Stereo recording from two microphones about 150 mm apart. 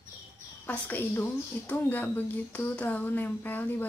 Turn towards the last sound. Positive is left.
turn(degrees=10)  # may be behind; listen again after turning